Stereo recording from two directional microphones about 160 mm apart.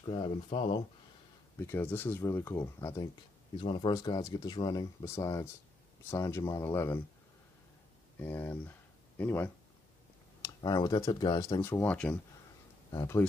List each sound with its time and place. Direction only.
0.0 s speech: 30° left (ahead or behind)
1.6 s speech: 15° left (ahead or behind)
3.5 s speech: 30° left (ahead or behind)
8.2 s speech: 15° left (ahead or behind)
10.4 s speech: 25° left (ahead or behind)